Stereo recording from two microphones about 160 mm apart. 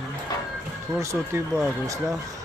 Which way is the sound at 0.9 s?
20° right (ahead or behind).